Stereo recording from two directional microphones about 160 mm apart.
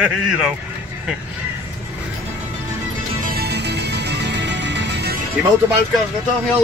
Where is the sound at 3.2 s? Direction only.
80° right.